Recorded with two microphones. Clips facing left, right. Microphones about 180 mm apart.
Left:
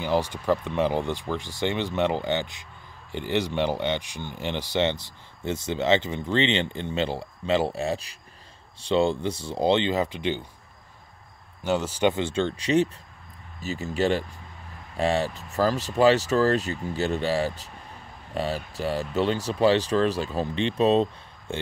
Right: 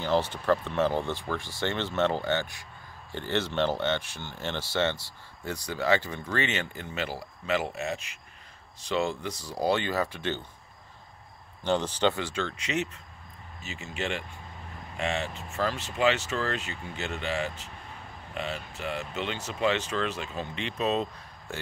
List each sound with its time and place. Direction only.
0.0 s speech: 15° left (ahead or behind)
11.6 s speech: 10° left (ahead or behind)
12.2 s speech: 30° left (ahead or behind)